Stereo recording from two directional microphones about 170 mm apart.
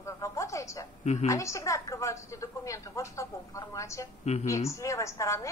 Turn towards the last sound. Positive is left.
turn(degrees=20)  # may be behind; listen again after turning